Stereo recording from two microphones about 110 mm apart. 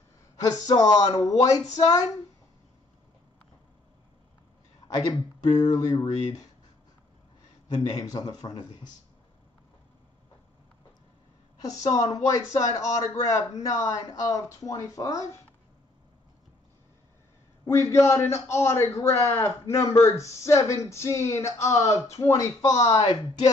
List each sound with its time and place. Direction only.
0.5 s speech: 40° left (ahead or behind)
4.8 s a sound: 35° left (ahead or behind)
5.4 s speech: 35° left (ahead or behind)
7.6 s speech: 40° left (ahead or behind)
11.7 s speech: 35° left (ahead or behind)
17.6 s a man's voice: 25° left (ahead or behind); by 23.5 s 40° left (ahead or behind)